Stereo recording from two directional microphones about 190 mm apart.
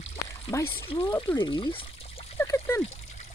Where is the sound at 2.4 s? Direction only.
10° left (ahead or behind).